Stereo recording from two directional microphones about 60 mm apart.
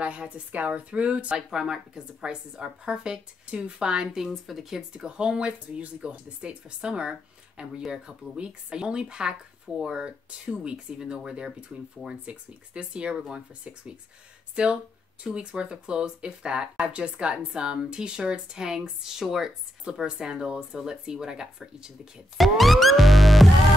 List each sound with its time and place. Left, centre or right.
0.0 s a woman's voice: centre
14.5 s speech: centre
22.4 s music: centre